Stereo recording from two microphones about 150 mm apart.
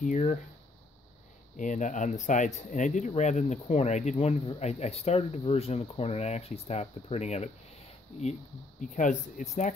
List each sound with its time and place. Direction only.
0.0 s speech: 55° left (ahead or behind)
1.6 s speech: 55° left (ahead or behind)
8.8 s speech: 60° left (ahead or behind)